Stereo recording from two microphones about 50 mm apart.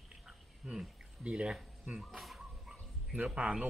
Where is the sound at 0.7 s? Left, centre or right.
Centre.